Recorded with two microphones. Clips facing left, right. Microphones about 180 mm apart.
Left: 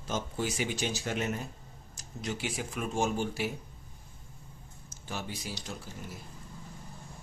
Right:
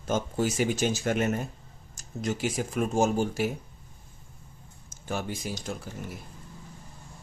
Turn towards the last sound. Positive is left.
turn(degrees=-50)  # may be behind; listen again after turning